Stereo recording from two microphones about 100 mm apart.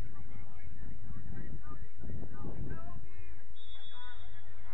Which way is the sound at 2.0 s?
40° left (ahead or behind).